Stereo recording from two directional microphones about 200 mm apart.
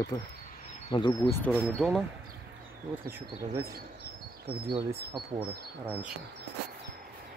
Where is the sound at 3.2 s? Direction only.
15° right (ahead or behind).